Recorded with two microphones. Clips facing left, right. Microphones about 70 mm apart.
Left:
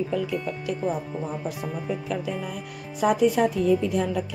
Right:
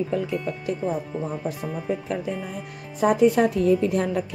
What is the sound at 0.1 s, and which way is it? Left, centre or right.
Speech, right.